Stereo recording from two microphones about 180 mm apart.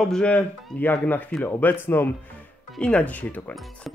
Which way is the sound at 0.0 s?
5° left (ahead or behind).